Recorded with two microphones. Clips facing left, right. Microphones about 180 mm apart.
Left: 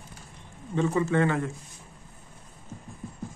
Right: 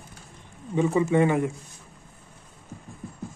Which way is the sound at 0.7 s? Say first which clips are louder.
Right 3 dB; 10° right (ahead or behind).